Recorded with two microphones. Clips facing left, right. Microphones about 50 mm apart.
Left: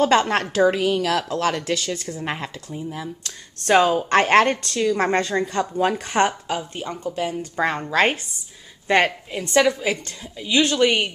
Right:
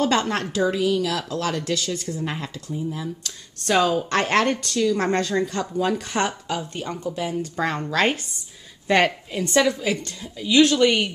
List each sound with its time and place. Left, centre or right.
0.0 s a woman's voice: left
6.4 s a woman's voice: centre
8.8 s a woman's voice: centre